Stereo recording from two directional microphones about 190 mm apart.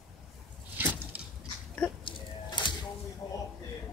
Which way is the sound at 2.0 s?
25° left (ahead or behind).